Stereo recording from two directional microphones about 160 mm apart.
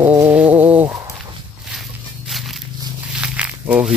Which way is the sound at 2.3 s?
Centre (ahead or behind).